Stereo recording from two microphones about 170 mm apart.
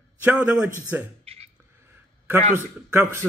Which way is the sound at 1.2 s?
35° right (ahead or behind).